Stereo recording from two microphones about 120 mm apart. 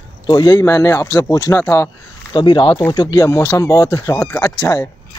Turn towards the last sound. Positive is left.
turn(degrees=25)  # may be behind; listen again after turning